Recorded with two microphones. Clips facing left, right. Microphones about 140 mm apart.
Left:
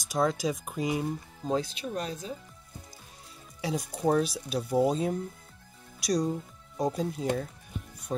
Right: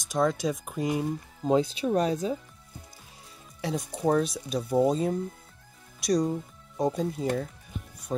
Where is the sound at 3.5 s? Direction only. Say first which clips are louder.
Right 1 dB; 5° left (ahead or behind).